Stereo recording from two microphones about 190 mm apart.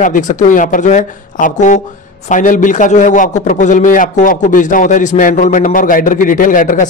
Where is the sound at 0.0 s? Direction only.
40° left (ahead or behind).